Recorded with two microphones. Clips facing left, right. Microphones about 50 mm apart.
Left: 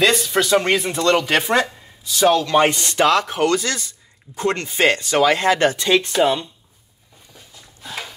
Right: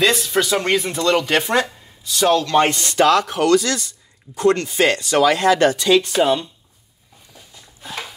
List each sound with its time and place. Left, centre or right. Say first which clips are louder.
0.0 s speech: even; centre; by 6.0 s left